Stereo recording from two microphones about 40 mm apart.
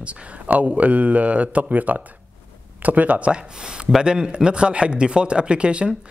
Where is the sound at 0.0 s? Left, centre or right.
Right.